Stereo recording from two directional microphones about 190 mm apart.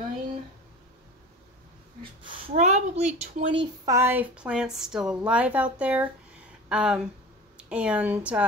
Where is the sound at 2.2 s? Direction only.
30° right (ahead or behind).